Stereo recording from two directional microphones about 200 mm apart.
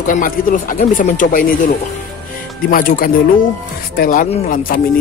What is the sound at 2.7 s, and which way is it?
Speech, 45° left (ahead or behind).